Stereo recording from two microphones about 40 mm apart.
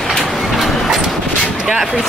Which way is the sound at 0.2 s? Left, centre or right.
Centre.